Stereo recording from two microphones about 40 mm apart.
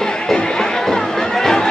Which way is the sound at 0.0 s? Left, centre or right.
Centre.